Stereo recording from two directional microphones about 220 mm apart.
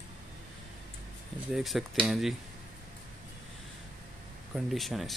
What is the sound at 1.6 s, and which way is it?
Speech, centre (ahead or behind).